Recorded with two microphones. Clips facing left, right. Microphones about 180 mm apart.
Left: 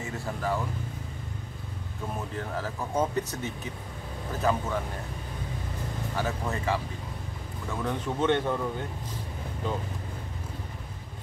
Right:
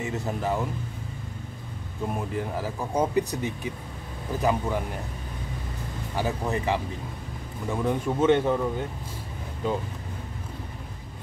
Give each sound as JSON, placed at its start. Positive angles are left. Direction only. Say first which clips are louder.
{"t": 0.0, "sound": "speech", "louder": "right 4 dB", "side_deg": -20}
{"t": 2.1, "sound": "speech", "louder": "right 2 dB", "side_deg": -10}
{"t": 6.1, "sound": "speech", "louder": "right 4 dB", "side_deg": -15}